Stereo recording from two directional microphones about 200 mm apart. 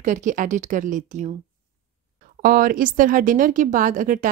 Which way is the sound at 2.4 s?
45° right (ahead or behind).